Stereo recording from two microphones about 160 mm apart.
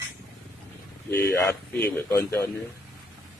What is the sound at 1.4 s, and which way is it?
Speech, 15° left (ahead or behind).